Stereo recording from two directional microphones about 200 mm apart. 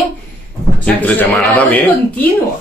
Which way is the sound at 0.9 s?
10° left (ahead or behind).